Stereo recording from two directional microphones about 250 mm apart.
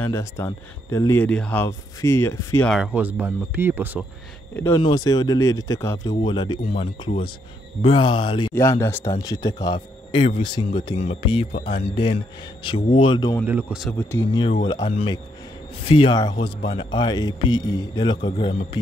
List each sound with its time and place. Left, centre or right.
0.0 s speech: centre
2.7 s speech: centre
4.6 s speech: centre
13.5 s speech: centre
14.7 s speech: left